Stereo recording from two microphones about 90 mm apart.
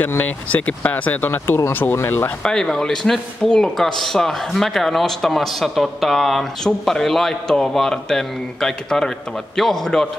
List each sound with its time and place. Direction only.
0.0 s speech: 20° left (ahead or behind)
2.4 s a man's voice: 5° left (ahead or behind)